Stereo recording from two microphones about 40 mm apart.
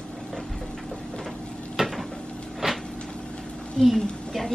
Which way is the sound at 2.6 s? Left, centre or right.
Centre.